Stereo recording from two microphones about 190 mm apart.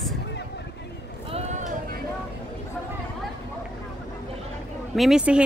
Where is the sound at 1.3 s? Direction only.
40° right (ahead or behind).